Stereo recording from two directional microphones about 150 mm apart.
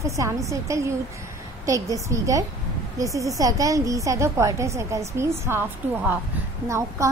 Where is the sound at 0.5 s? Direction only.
20° right (ahead or behind).